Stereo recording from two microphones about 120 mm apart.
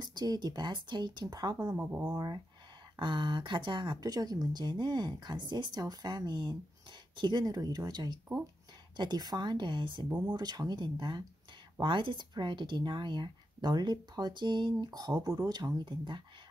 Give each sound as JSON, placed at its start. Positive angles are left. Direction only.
{"t": 0.0, "sound": "speech", "side_deg": -35}
{"t": 1.8, "sound": "speech", "side_deg": -20}
{"t": 2.1, "sound": "speech", "side_deg": -35}
{"t": 10.0, "sound": "speech", "side_deg": -10}
{"t": 10.3, "sound": "speech", "side_deg": -35}